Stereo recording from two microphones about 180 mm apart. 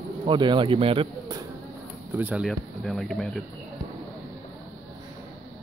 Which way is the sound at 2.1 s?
10° right (ahead or behind).